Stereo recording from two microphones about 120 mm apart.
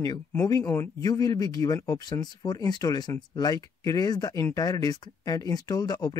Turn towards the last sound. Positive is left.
turn(degrees=30)  # may be behind; listen again after turning